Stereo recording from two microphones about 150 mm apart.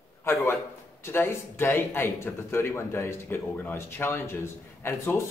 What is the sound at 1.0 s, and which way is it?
Speech, 15° left (ahead or behind).